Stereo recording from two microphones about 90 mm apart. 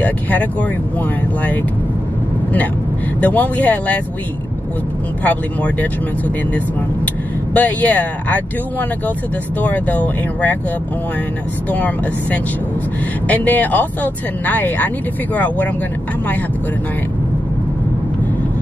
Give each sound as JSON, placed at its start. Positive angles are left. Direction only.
{"t": 0.0, "sound": "speech", "side_deg": 15}
{"t": 3.2, "sound": "speech", "side_deg": 15}
{"t": 5.2, "sound": "speech", "side_deg": 15}
{"t": 11.7, "sound": "speech", "side_deg": 15}